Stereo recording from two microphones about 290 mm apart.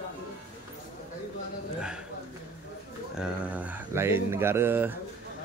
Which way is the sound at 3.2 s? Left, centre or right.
Centre.